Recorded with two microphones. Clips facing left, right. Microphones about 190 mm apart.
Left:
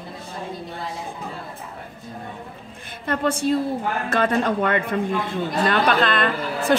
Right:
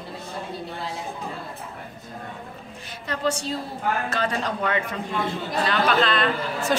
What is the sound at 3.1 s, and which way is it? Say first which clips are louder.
A woman's voice: left 5 dB; 55° left (ahead or behind).